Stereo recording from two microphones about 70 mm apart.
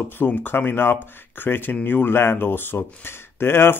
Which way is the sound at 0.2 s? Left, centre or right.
Left.